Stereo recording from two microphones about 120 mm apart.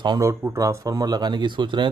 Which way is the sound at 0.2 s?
25° right (ahead or behind).